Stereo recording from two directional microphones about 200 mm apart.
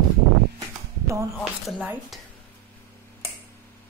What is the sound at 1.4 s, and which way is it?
Speech, 5° right (ahead or behind).